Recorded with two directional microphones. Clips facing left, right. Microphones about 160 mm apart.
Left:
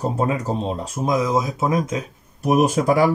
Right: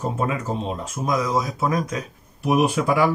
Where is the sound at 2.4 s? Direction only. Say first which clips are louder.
Left 2 dB; 40° left (ahead or behind).